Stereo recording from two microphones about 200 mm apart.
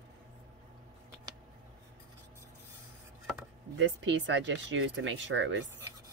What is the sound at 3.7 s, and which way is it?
Speech, 65° right (ahead or behind).